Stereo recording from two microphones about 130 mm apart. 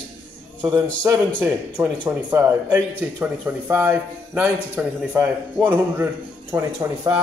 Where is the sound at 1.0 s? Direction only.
20° right (ahead or behind).